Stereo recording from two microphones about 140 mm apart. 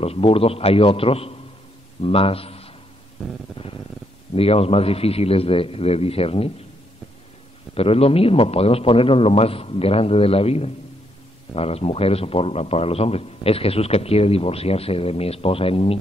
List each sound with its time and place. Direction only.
0.0 s a man's voice: 45° left (ahead or behind)
3.6 s purr: 40° left (ahead or behind)
4.4 s a man's voice: 45° left (ahead or behind)
7.7 s a man's voice: 45° left (ahead or behind)